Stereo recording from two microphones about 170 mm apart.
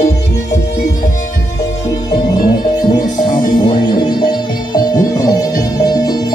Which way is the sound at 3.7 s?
25° left (ahead or behind).